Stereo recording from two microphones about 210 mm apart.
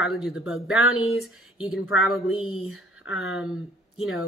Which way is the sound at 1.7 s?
Centre (ahead or behind).